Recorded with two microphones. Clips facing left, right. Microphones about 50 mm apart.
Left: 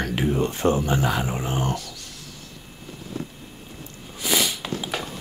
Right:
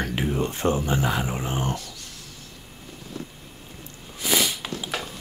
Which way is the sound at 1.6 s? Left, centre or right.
Right.